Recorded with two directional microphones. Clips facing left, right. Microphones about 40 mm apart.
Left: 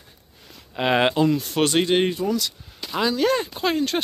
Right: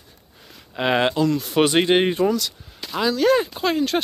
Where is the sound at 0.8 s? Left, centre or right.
Centre.